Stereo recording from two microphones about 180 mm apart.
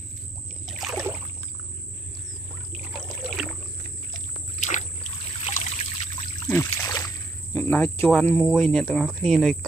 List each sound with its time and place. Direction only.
0.7 s rowboat: 5° right (ahead or behind)
2.8 s trickle: 5° right (ahead or behind)
4.6 s rowboat: 40° left (ahead or behind)
5.4 s trickle: 40° left (ahead or behind)
6.4 s a sound: 15° left (ahead or behind)
7.5 s speech: 10° left (ahead or behind)